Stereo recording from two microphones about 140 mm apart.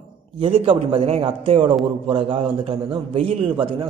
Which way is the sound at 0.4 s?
45° right (ahead or behind).